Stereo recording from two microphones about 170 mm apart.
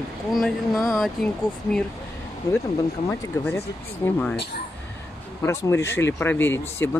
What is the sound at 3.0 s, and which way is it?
Speech, 15° left (ahead or behind).